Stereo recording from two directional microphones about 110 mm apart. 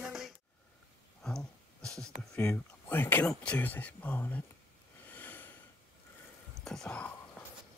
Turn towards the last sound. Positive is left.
turn(degrees=10)  # may be behind; listen again after turning